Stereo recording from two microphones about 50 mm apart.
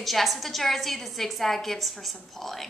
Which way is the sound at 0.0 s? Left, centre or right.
Centre.